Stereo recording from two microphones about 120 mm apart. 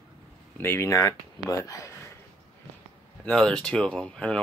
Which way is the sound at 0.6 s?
20° left (ahead or behind).